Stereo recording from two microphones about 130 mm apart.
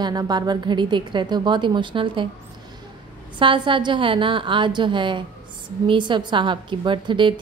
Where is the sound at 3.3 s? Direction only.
40° right (ahead or behind).